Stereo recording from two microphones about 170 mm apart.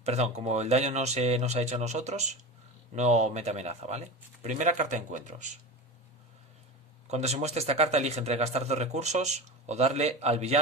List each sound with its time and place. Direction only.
0.0 s speech: 40° right (ahead or behind)
7.1 s speech: 40° right (ahead or behind)